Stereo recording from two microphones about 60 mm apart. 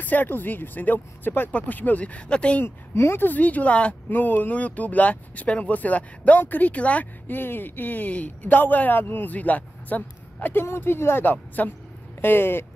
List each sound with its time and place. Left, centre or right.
0.0 s speech: left
2.6 s speech: left
4.1 s speech: left
11.6 s speech: left
12.2 s speech: left